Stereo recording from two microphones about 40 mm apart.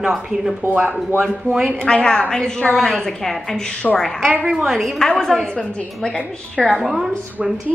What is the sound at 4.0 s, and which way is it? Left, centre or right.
Speech, centre.